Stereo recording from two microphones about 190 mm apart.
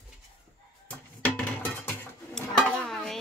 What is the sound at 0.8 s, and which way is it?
Music, 10° left (ahead or behind).